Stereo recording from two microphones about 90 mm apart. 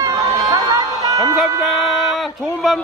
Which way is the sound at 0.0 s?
45° right (ahead or behind).